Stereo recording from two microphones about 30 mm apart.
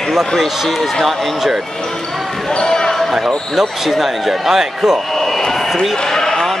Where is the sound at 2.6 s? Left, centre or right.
Centre.